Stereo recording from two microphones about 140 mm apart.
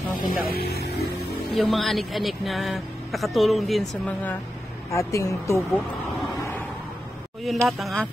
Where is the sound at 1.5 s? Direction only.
Centre (ahead or behind).